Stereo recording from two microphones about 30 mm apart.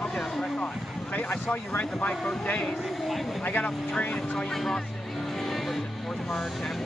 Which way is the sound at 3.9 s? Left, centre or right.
Left.